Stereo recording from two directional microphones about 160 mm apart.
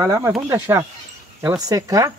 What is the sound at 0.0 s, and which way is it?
Speech, 20° right (ahead or behind).